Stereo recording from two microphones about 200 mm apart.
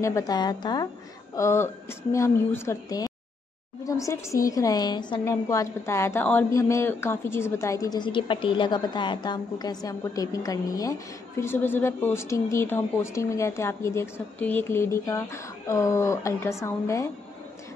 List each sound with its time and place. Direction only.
0.0 s a woman's voice: 15° left (ahead or behind)